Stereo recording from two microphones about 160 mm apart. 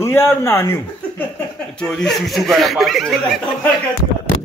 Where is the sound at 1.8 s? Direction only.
5° left (ahead or behind).